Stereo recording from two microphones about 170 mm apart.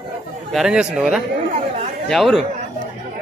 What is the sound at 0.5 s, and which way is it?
Speech, 5° right (ahead or behind).